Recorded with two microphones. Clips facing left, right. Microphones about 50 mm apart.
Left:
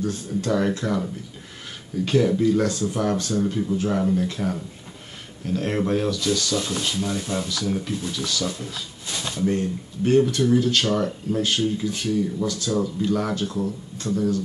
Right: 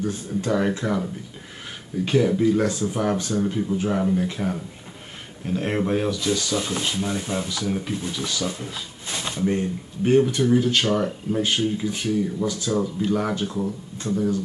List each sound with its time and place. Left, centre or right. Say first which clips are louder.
0.0 s speech: even; centre
2.0 s speech: even; centre